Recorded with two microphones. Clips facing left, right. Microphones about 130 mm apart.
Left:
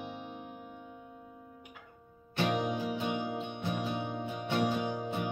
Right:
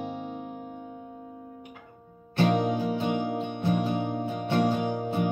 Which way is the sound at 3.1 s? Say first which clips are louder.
Right 6 dB; 50° right (ahead or behind).